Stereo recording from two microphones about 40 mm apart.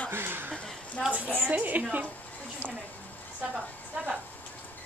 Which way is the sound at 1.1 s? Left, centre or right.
Right.